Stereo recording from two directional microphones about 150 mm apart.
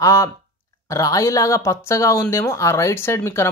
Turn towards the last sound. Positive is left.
turn(degrees=20)  # may be behind; listen again after turning